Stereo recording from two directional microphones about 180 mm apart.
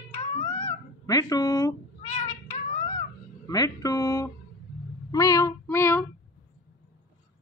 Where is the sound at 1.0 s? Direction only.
20° left (ahead or behind).